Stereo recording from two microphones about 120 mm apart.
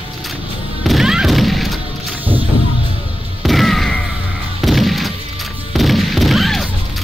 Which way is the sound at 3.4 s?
Centre (ahead or behind).